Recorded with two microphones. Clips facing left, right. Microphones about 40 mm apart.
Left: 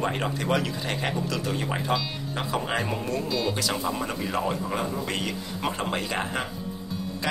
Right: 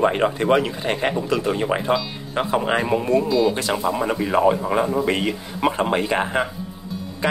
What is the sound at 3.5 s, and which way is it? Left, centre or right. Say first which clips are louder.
Speech: right 6 dB; right.